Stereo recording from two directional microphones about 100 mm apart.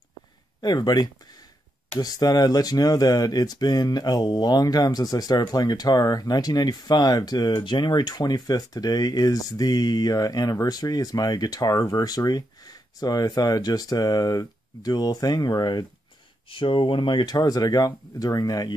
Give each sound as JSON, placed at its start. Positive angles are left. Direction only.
{"t": 0.6, "sound": "speech", "side_deg": 40}
{"t": 16.4, "sound": "speech", "side_deg": 60}